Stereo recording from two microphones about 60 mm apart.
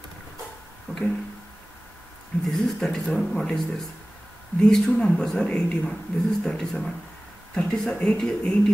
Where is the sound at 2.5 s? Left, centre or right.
Centre.